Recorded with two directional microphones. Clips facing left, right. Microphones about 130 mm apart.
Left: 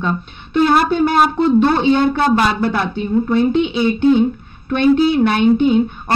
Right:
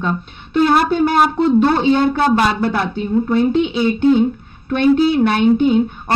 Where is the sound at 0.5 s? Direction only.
40° right (ahead or behind).